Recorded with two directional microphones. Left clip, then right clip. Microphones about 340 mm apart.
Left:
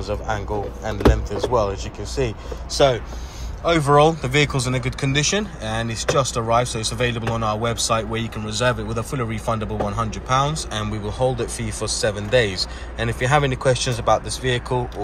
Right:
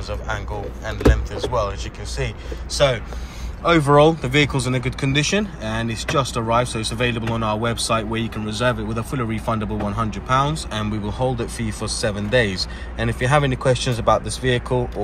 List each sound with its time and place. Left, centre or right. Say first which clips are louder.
0.3 s speech: left 1 dB; centre